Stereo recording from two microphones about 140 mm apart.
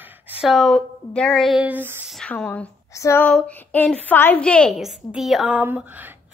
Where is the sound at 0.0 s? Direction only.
15° right (ahead or behind).